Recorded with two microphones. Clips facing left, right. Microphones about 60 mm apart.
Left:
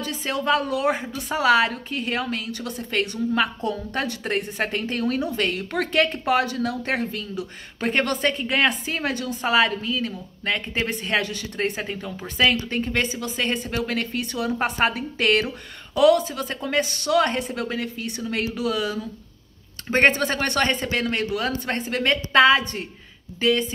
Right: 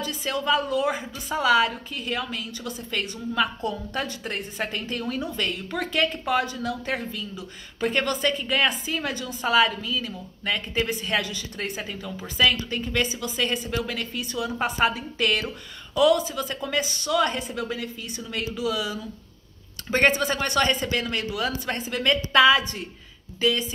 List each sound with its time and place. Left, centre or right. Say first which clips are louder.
0.0 s a woman's voice: left 2 dB; left
19.9 s speech: left 2 dB; left
20.2 s a woman's voice: left 1 dB; left